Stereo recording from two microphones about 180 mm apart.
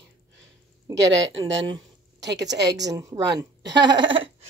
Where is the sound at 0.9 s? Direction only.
85° right.